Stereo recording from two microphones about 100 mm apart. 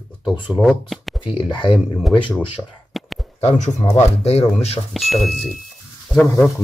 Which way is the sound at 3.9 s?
90° left.